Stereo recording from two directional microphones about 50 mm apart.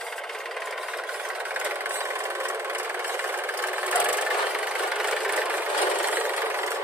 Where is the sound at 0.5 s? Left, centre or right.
Centre.